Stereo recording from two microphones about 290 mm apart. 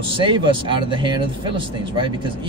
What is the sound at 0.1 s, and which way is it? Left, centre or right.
A man's voice, centre.